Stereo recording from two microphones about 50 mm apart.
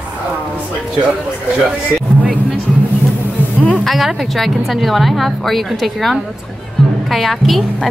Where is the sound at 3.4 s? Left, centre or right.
Left.